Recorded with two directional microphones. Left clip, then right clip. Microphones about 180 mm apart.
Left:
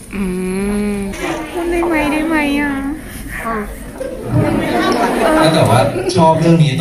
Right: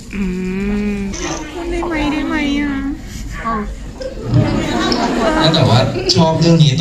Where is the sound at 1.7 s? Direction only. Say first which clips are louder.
Left 3 dB; 35° left (ahead or behind).